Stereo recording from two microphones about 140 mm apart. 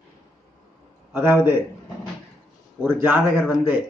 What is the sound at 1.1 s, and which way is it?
Speech, 15° right (ahead or behind).